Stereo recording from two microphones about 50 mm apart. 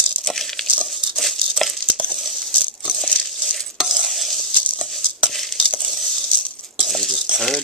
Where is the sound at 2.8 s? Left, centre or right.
Centre.